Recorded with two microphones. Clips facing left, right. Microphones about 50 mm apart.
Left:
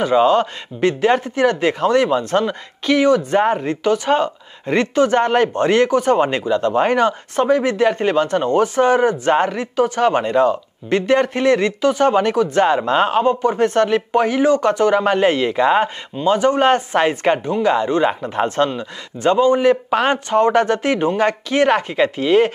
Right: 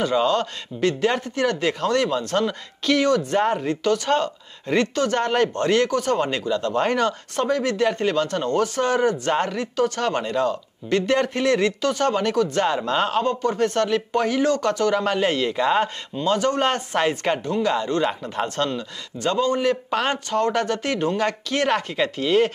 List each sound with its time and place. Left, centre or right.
0.0 s speech: centre